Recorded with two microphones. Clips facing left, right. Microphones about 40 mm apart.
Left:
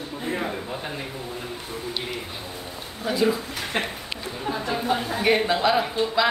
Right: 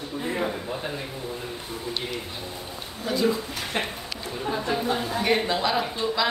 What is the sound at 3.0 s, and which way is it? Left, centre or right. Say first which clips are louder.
Speech: left 2 dB; centre.